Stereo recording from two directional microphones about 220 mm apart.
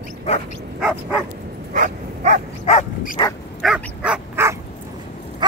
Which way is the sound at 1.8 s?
35° right (ahead or behind).